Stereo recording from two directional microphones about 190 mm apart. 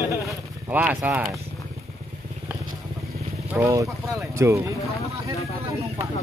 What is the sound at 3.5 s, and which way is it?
Speech, 15° right (ahead or behind).